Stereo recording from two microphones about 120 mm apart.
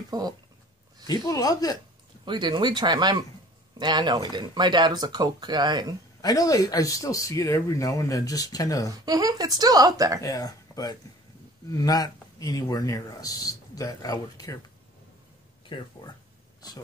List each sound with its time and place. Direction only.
0.1 s speech: 30° right (ahead or behind)
1.0 s speech: 30° left (ahead or behind)
2.2 s speech: 40° right (ahead or behind)
6.2 s speech: 30° left (ahead or behind)
9.0 s speech: 30° right (ahead or behind)
10.2 s speech: 30° left (ahead or behind)
15.7 s speech: 40° left (ahead or behind)